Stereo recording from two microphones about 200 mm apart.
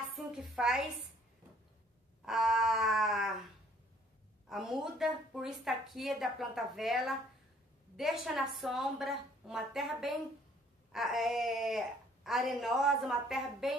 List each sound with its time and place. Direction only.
0.1 s a sound: centre (ahead or behind)
2.2 s a woman's voice: centre (ahead or behind)
4.5 s a woman's voice: centre (ahead or behind)